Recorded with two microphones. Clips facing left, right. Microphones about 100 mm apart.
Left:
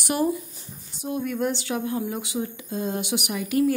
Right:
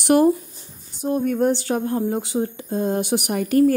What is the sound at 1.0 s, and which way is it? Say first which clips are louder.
Speech: right 6 dB; 45° right (ahead or behind).